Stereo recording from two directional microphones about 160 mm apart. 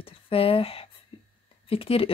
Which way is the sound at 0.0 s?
35° left (ahead or behind).